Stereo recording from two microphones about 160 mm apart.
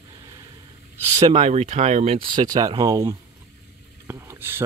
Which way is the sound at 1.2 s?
40° right (ahead or behind).